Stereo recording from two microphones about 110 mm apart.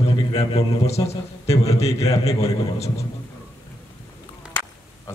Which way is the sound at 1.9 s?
30° left (ahead or behind).